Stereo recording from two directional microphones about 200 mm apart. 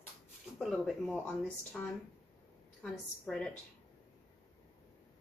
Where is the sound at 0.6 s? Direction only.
Centre (ahead or behind).